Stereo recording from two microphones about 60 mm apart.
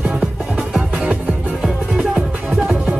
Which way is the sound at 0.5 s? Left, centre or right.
Centre.